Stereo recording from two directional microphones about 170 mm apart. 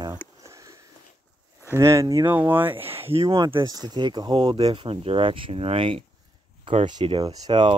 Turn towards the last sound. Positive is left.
turn(degrees=-30)  # may be behind; listen again after turning